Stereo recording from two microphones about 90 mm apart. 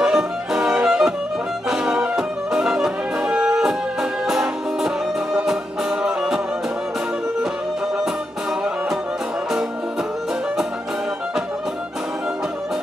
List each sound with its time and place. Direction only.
0.0 s music: 5° right (ahead or behind)
1.7 s brass instrument: 5° right (ahead or behind)
2.1 s music: 5° right (ahead or behind)